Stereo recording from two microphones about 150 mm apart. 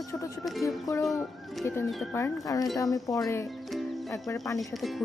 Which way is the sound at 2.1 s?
20° left (ahead or behind).